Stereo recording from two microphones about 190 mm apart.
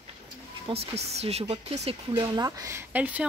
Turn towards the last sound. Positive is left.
turn(degrees=-10)  # may be behind; listen again after turning